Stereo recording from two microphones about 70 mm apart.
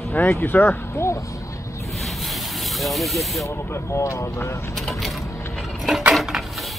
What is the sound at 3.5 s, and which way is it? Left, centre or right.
Speech, left.